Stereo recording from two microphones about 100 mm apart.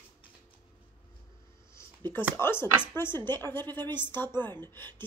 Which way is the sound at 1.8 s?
20° left (ahead or behind).